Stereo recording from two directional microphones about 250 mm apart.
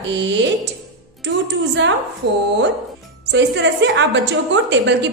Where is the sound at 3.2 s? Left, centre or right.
Right.